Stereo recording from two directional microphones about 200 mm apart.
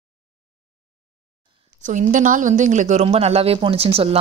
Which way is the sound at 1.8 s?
40° right (ahead or behind).